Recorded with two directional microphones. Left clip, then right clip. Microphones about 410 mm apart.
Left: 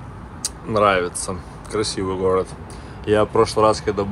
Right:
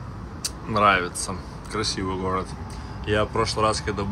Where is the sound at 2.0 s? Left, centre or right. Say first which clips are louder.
Left 7 dB; left.